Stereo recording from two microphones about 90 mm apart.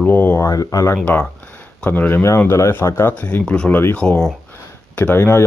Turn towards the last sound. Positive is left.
turn(degrees=25)  # may be behind; listen again after turning